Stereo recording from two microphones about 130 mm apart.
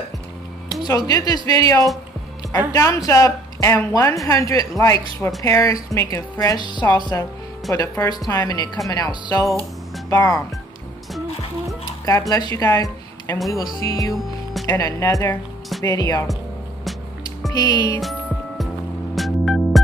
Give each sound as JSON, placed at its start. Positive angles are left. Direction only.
{"t": 0.8, "sound": "speech", "side_deg": 30}
{"t": 12.1, "sound": "speech", "side_deg": 25}
{"t": 17.5, "sound": "speech", "side_deg": 30}
{"t": 19.1, "sound": "music", "side_deg": 0}